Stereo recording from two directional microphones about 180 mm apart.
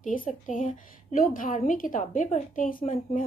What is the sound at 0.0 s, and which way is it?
A woman's voice, 45° left (ahead or behind).